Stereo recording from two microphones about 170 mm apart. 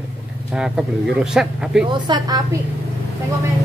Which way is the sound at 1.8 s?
25° right (ahead or behind).